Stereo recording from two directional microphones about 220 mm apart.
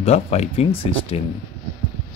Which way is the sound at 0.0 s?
30° left (ahead or behind).